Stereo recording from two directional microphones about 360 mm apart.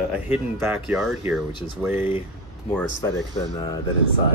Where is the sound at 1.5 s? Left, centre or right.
Centre.